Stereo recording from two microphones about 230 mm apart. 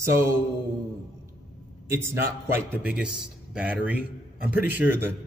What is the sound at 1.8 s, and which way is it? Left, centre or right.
A man's voice, centre.